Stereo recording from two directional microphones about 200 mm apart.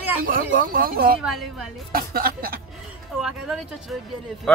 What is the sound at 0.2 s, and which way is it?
Speech, 45° right (ahead or behind).